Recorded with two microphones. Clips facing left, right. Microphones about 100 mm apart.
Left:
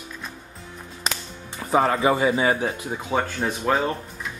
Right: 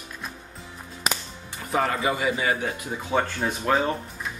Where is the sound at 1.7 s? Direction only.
30° left (ahead or behind).